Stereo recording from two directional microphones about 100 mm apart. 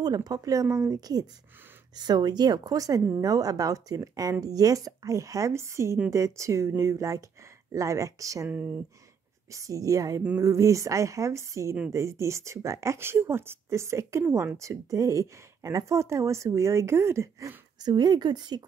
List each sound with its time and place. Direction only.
0.0 s speech: 40° right (ahead or behind)
8.5 s speech: 15° right (ahead or behind)
9.5 s speech: 35° right (ahead or behind)
17.7 s speech: 45° right (ahead or behind)